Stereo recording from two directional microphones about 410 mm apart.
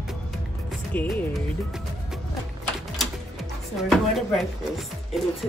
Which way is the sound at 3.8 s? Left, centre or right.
Centre.